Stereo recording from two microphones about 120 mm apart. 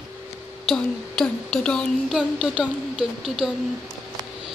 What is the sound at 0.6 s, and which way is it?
Speech, 5° left (ahead or behind).